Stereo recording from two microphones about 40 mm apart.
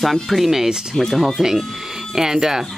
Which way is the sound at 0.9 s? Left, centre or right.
Centre.